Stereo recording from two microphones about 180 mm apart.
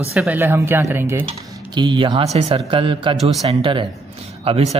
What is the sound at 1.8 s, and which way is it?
A man's voice, 25° right (ahead or behind).